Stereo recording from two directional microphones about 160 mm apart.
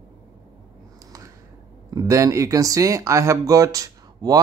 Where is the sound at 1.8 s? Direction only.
20° right (ahead or behind).